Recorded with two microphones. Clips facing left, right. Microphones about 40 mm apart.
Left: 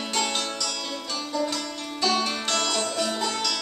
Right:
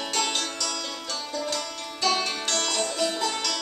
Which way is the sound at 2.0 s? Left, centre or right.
Centre.